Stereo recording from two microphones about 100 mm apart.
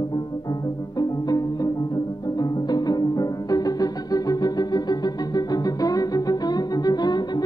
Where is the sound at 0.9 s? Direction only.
40° left (ahead or behind).